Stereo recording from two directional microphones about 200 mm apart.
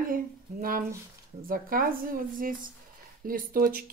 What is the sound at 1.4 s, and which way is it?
Speech, 45° right (ahead or behind).